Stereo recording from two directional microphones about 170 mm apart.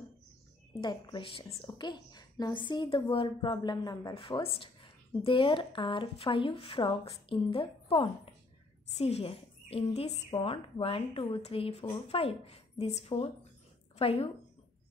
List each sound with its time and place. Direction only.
0.7 s a woman's voice: 25° left (ahead or behind)